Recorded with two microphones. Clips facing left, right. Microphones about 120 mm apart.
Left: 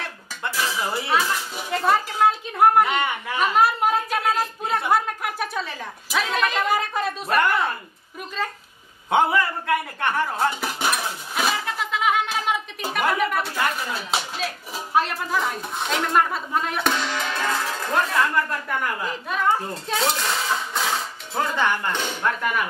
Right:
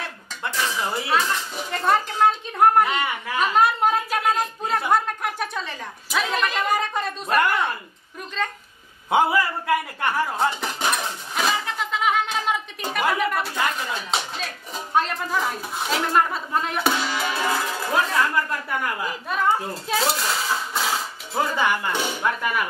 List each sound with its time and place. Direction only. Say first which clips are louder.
0.5 s a sound: even; 5° left (ahead or behind)
9.1 s music: even; 5° right (ahead or behind)
15.0 s a child's voice: even; 5° left (ahead or behind)